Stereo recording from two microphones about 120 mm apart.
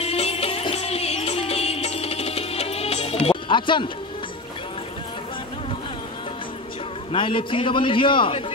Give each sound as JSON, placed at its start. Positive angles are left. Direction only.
{"t": 0.0, "sound": "music", "side_deg": 55}
{"t": 7.1, "sound": "a man's voice", "side_deg": 45}